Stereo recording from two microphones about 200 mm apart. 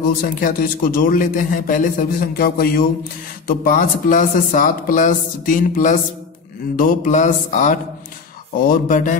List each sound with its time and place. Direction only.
0.2 s a man's voice: 45° left (ahead or behind)